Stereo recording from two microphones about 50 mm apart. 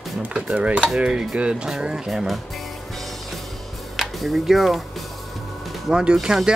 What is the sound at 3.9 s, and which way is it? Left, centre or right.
Speech, centre.